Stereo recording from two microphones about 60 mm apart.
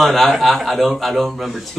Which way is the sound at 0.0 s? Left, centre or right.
Centre.